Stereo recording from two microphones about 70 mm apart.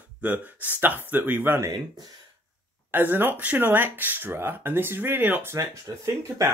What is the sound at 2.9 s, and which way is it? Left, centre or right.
Speech, right.